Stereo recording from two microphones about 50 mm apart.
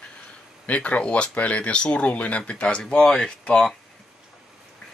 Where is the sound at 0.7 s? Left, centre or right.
Left.